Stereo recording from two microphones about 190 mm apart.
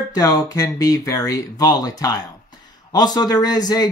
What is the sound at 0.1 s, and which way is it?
Speech, 20° left (ahead or behind).